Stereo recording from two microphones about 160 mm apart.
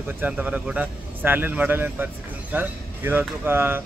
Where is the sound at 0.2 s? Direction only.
10° right (ahead or behind).